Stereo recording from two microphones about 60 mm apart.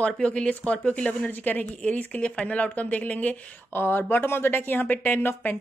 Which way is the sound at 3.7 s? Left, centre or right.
Left.